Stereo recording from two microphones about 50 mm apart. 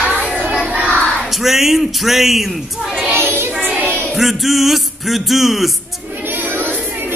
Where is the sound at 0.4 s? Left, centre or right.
Right.